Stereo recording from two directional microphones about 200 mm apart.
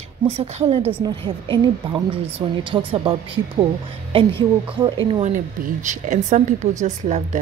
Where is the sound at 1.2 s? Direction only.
25° right (ahead or behind).